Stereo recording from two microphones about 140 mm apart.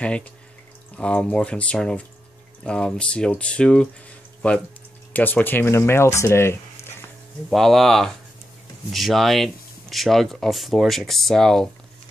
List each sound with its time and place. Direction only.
0.0 s speech: 10° left (ahead or behind)
5.1 s speech: 15° left (ahead or behind)
7.4 s speech: centre (ahead or behind)